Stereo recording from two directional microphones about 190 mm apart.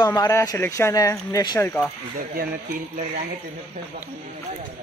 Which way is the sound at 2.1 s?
55° right (ahead or behind).